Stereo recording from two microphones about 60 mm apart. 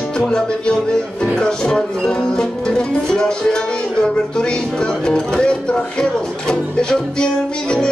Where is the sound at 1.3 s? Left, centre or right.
Centre.